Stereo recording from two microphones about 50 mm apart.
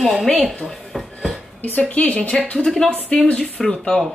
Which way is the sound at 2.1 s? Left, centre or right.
Left.